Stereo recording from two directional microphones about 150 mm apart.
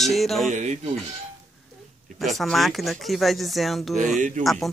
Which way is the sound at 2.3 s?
Centre (ahead or behind).